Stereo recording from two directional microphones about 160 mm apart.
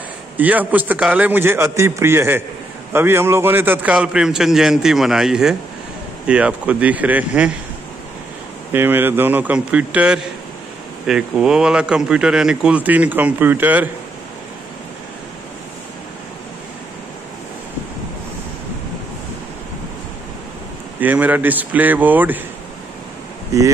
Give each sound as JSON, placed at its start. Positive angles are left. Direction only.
{"t": 0.4, "sound": "a man's voice", "side_deg": -10}
{"t": 8.7, "sound": "a man's voice", "side_deg": -10}
{"t": 21.0, "sound": "a man's voice", "side_deg": -10}